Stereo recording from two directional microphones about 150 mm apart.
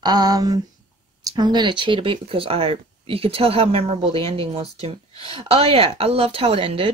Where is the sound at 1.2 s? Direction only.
25° right (ahead or behind).